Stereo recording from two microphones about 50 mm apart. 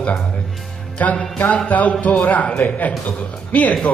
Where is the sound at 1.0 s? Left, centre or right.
Left.